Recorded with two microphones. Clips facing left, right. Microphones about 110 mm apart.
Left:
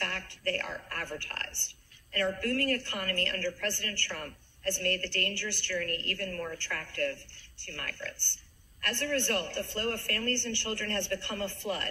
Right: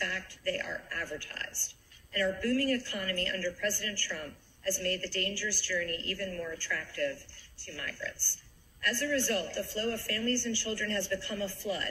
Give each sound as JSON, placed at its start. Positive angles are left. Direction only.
{"t": 0.0, "sound": "a woman's voice", "side_deg": 55}